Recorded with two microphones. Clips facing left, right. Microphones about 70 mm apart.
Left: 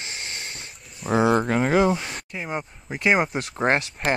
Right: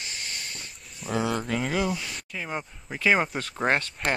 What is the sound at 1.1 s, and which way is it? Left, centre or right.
Speech, left.